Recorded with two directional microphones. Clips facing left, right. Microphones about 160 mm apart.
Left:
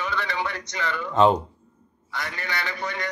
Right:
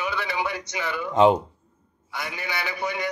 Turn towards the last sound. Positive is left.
turn(degrees=-10)  # may be behind; listen again after turning